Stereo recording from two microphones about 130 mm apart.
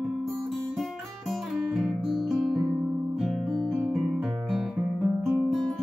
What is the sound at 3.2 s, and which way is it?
Music, centre (ahead or behind).